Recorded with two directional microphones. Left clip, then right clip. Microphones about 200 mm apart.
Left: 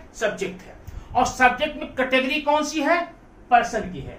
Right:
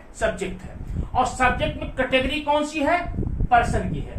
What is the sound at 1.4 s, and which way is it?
Speech, 10° left (ahead or behind).